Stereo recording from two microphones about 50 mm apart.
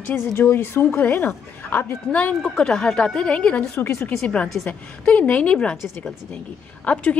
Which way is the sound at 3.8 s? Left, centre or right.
Left.